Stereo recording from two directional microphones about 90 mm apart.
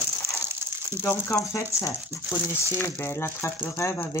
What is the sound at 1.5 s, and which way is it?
Speech, 35° left (ahead or behind).